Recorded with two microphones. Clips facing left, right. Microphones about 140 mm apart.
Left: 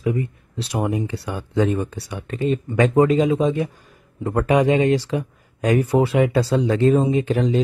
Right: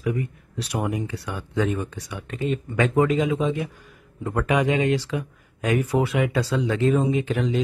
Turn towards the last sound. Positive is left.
turn(degrees=35)  # may be behind; listen again after turning